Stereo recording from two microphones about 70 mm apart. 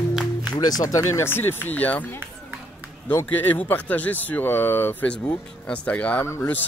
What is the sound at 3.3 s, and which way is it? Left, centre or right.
Speech, left.